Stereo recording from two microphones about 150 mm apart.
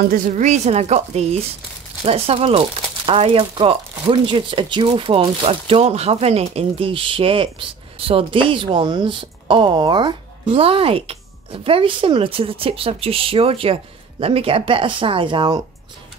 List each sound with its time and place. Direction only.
0.4 s a woman's voice: 50° right (ahead or behind); by 15.6 s 30° right (ahead or behind)